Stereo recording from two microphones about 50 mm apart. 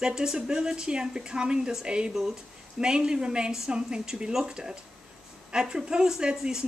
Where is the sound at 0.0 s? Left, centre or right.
Centre.